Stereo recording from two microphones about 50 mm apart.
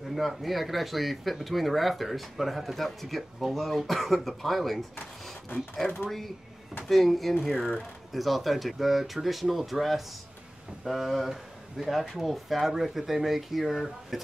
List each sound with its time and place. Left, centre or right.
0.1 s speech: centre
6.0 s speech: centre